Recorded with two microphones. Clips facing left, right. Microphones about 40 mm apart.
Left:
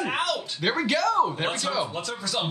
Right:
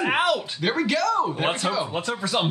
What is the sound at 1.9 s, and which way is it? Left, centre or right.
Speech, right.